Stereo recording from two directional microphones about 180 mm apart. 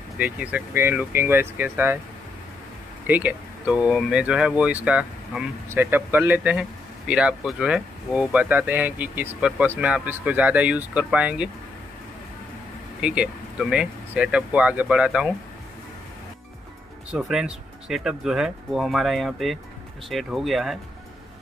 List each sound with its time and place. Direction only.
0.2 s speech: 10° right (ahead or behind)
3.1 s speech: 10° right (ahead or behind)
13.0 s speech: 5° right (ahead or behind)
17.1 s speech: 5° right (ahead or behind)